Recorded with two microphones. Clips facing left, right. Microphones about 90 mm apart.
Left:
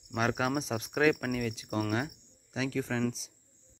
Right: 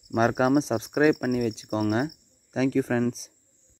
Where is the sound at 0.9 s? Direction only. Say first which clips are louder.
Right 5 dB; 20° right (ahead or behind).